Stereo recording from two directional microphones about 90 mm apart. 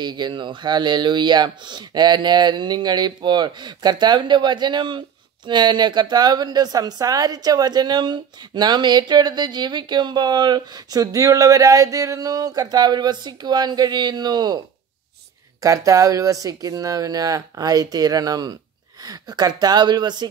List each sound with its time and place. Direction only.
0.0 s speech: 55° right (ahead or behind)
15.6 s speech: 40° right (ahead or behind)